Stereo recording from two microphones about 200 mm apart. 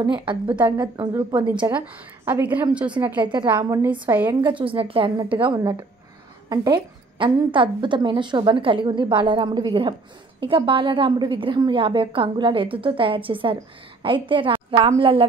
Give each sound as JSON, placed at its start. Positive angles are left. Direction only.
{"t": 0.0, "sound": "a woman's voice", "side_deg": -25}
{"t": 1.8, "sound": "a woman's voice", "side_deg": -10}
{"t": 3.3, "sound": "a woman's voice", "side_deg": -25}
{"t": 4.4, "sound": "a woman's voice", "side_deg": -25}